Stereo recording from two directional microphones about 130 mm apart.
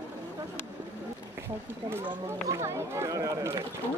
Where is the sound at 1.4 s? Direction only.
20° right (ahead or behind).